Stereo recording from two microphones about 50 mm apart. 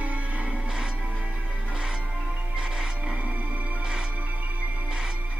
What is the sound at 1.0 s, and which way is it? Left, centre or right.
Music, right.